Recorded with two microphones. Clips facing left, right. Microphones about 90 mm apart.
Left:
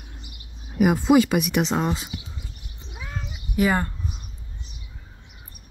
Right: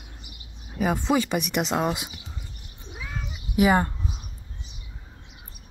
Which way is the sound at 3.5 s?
15° right (ahead or behind).